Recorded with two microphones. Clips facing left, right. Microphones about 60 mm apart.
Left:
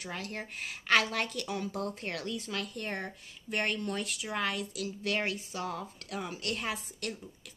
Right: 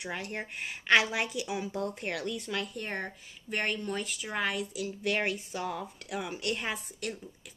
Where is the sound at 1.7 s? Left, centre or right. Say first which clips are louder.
Right 2 dB; right.